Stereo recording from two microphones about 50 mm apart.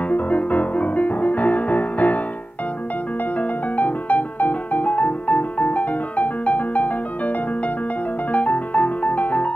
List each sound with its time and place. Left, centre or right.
0.1 s music: left
3.3 s music: left